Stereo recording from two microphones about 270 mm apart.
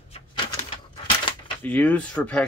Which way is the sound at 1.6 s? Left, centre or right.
Centre.